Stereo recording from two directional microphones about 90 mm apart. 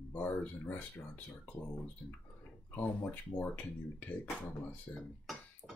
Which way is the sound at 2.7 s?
20° left (ahead or behind).